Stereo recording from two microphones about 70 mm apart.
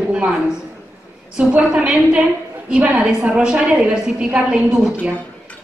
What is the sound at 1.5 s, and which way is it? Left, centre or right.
A woman's voice, centre.